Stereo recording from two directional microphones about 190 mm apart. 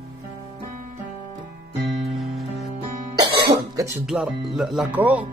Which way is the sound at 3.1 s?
20° right (ahead or behind).